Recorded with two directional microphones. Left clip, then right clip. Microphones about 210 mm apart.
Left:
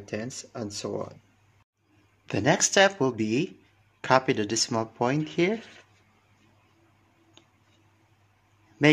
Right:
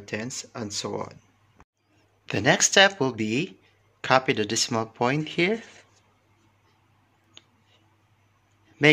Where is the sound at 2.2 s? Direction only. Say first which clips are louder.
Right 2 dB; centre (ahead or behind).